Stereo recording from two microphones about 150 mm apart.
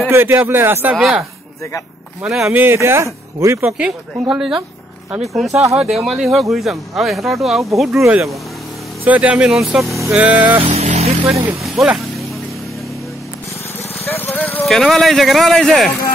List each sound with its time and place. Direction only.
0.1 s speech: 15° right (ahead or behind)
0.9 s speech: centre (ahead or behind)
2.2 s speech: 5° right (ahead or behind)
2.6 s speech: 15° right (ahead or behind)
3.7 s speech: 5° right (ahead or behind)
9.0 s speech: 10° right (ahead or behind)
10.7 s vehicle: 50° right (ahead or behind)
11.6 s vehicle: 5° right (ahead or behind)
14.0 s vehicle: 15° left (ahead or behind)
14.7 s speech: centre (ahead or behind)